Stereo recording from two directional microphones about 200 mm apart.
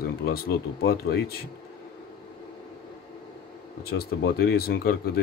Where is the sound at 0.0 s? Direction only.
50° left (ahead or behind).